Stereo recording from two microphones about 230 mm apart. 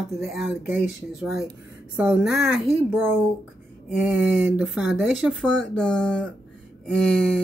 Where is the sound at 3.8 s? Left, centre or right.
Centre.